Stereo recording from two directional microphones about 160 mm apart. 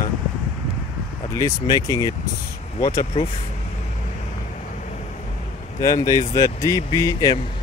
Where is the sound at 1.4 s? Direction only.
20° left (ahead or behind).